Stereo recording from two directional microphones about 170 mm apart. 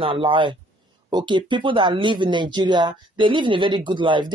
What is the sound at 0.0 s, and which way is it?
Speech, 30° right (ahead or behind).